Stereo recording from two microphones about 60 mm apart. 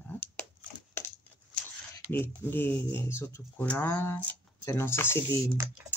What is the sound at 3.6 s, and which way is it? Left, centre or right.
Speech, left.